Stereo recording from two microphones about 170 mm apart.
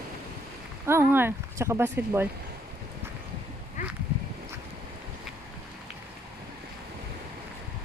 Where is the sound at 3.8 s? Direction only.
45° left (ahead or behind).